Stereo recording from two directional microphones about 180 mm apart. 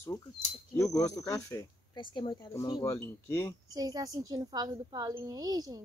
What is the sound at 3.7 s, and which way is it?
A woman's voice, 20° right (ahead or behind).